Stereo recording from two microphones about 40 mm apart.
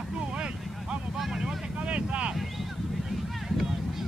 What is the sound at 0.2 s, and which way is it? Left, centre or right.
Vehicle, right.